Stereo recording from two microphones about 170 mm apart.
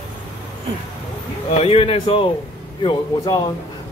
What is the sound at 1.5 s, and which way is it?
Speech, 35° left (ahead or behind).